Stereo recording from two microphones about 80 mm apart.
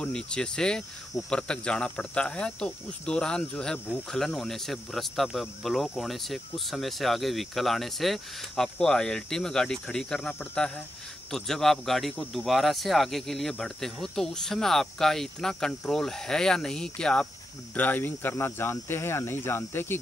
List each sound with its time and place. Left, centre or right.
0.0 s speech: centre; by 20.0 s left